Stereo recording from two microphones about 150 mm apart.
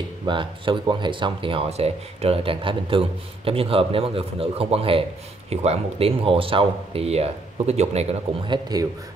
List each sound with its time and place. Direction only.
0.3 s speech: 30° right (ahead or behind)
8.5 s speech: 25° right (ahead or behind)